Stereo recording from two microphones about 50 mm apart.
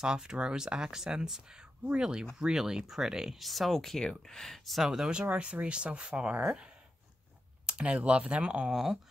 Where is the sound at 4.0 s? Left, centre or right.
Centre.